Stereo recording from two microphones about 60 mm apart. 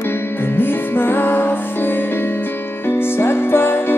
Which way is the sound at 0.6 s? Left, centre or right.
Left.